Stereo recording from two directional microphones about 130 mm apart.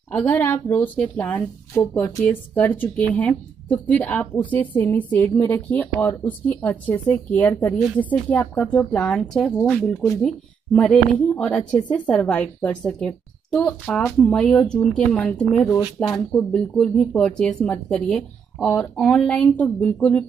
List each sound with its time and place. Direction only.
0.1 s speech: 10° left (ahead or behind)
16.0 s speech: 20° left (ahead or behind)
16.5 s speech: 5° left (ahead or behind)